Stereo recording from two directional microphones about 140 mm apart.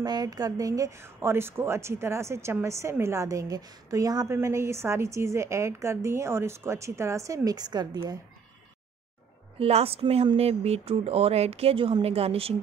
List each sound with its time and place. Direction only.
0.0 s speech: 30° right (ahead or behind)
9.6 s speech: 45° right (ahead or behind)